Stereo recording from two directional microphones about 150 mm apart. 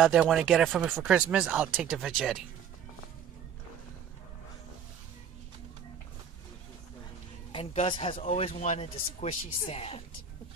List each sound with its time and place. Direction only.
0.0 s speech: 5° right (ahead or behind)
7.7 s a man's voice: 45° left (ahead or behind)